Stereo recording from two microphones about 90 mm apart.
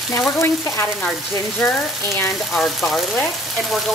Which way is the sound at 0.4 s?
35° left (ahead or behind).